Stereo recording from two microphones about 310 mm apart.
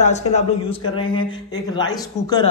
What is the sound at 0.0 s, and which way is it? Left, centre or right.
A man's voice, left.